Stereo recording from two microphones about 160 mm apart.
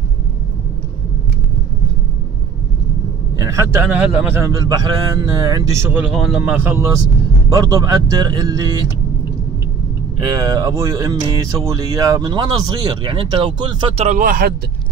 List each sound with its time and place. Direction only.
3.3 s a man's voice: 20° right (ahead or behind)
10.2 s speech: 25° right (ahead or behind)
13.9 s speech: 50° right (ahead or behind)